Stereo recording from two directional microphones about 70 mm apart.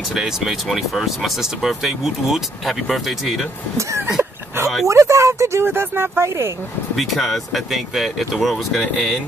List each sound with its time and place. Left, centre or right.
0.1 s speech: centre
4.8 s speech: right
7.0 s speech: centre